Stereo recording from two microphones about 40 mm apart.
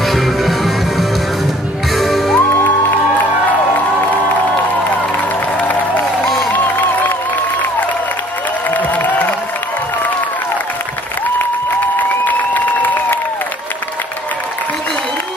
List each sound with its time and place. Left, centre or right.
0.0 s music: centre
6.5 s music: left
8.6 s crowd: left
12.3 s applause: left